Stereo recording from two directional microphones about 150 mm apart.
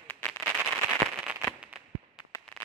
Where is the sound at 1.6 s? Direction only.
10° right (ahead or behind).